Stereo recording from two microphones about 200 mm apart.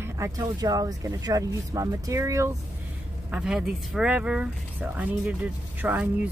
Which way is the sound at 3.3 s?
5° right (ahead or behind).